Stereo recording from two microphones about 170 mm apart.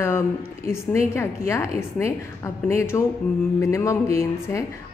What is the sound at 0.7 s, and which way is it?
Speech, 15° left (ahead or behind).